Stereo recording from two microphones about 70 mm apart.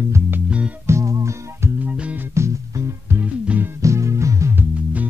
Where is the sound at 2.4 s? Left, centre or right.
Right.